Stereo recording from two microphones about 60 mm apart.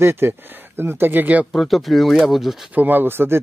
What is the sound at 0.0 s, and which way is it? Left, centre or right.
Speech, right.